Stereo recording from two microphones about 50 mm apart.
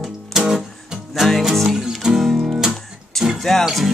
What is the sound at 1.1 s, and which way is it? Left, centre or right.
Music, centre.